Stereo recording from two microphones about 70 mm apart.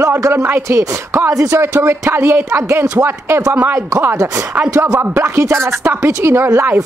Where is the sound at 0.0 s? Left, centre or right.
Right.